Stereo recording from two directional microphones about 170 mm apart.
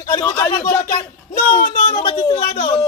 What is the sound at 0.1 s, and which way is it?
Speech, 20° left (ahead or behind).